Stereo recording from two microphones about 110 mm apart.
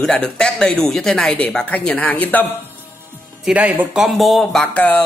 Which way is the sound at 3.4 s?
15° right (ahead or behind).